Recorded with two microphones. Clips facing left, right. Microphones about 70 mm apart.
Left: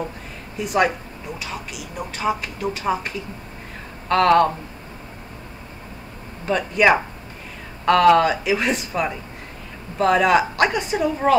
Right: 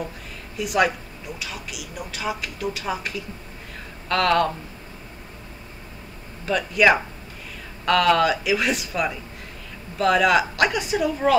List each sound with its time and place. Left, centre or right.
0.6 s speech: left
4.1 s speech: left
6.4 s speech: left